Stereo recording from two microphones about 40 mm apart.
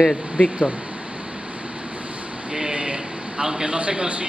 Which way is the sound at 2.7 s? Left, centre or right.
Right.